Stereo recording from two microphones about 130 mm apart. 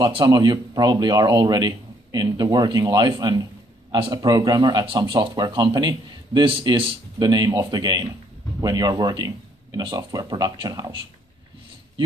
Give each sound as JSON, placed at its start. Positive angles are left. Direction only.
{"t": 0.0, "sound": "speech", "side_deg": -35}